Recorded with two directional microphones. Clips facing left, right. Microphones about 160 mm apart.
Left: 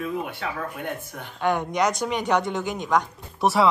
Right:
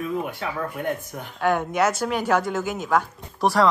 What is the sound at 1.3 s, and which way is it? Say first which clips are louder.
Speech: right 2 dB; centre (ahead or behind).